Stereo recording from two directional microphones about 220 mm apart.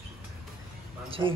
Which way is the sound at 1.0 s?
25° right (ahead or behind).